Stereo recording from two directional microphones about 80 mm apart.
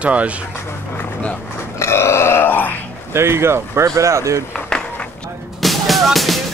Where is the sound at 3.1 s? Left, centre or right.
Right.